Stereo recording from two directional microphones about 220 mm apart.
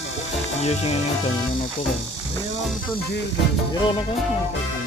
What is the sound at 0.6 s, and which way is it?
Speech, 30° left (ahead or behind).